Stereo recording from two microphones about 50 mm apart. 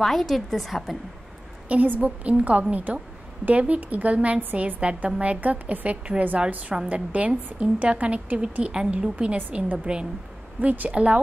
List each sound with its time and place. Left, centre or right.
0.0 s a woman's voice: centre
1.7 s a woman's voice: right
10.6 s a woman's voice: right